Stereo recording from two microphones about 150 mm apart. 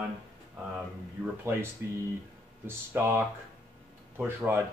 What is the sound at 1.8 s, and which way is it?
Speech, 15° right (ahead or behind).